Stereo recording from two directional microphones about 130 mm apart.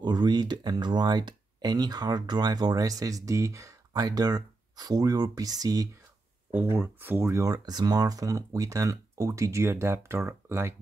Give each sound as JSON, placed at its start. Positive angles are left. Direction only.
{"t": 0.0, "sound": "speech", "side_deg": -35}
{"t": 6.5, "sound": "speech", "side_deg": -15}